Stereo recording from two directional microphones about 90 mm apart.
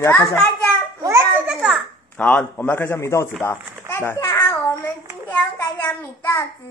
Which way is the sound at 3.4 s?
30° left (ahead or behind).